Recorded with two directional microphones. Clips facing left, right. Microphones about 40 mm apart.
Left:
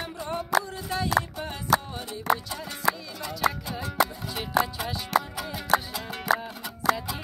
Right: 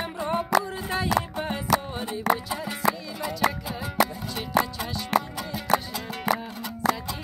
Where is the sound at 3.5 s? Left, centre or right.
Centre.